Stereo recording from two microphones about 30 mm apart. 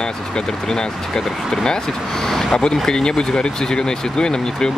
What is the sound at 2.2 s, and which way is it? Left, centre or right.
Speech, centre.